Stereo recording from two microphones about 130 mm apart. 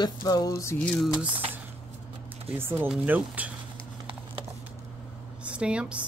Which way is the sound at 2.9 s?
10° right (ahead or behind).